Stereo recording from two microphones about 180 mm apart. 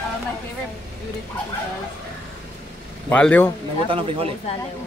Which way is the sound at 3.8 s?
30° right (ahead or behind).